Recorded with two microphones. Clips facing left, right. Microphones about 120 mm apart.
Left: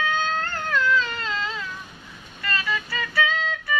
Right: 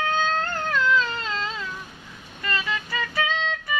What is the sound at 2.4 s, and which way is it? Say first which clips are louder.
Music: even; 15° right (ahead or behind).